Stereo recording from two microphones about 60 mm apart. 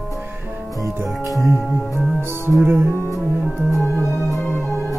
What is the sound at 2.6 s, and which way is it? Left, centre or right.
Music, right.